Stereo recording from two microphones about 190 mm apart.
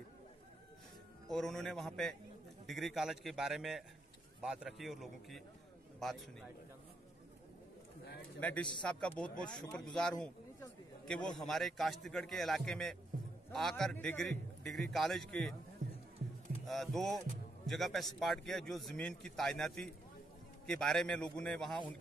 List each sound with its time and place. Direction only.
1.3 s speech: centre (ahead or behind)
8.4 s a man's voice: 5° left (ahead or behind)
16.6 s speech: centre (ahead or behind)